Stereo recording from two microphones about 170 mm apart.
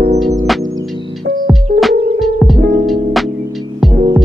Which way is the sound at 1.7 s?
55° right (ahead or behind).